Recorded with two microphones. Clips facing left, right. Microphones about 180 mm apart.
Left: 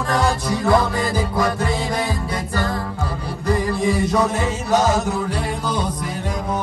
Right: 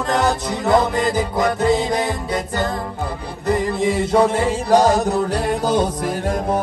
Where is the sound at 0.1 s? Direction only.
20° right (ahead or behind).